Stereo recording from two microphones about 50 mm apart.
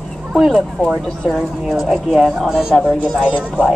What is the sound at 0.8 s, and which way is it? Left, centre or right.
Speech, left.